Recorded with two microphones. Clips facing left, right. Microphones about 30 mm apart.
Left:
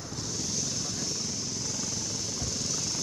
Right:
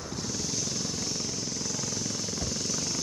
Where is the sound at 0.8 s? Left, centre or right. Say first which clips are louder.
Right 1 dB; centre.